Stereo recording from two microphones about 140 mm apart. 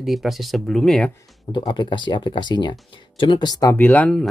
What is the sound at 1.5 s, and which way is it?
Speech, 35° left (ahead or behind).